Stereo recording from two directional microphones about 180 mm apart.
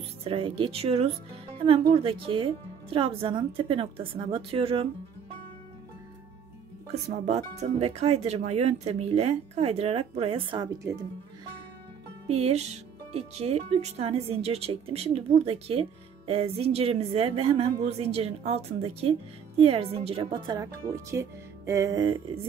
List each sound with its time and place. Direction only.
0.2 s a woman's voice: 30° right (ahead or behind)
6.9 s speech: 40° right (ahead or behind); by 11.0 s 20° right (ahead or behind)
12.3 s speech: 35° right (ahead or behind)